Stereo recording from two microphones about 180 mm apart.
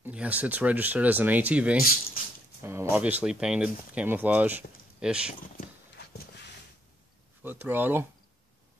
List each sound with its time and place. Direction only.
0.0 s speech: 10° right (ahead or behind)
7.4 s speech: 10° right (ahead or behind)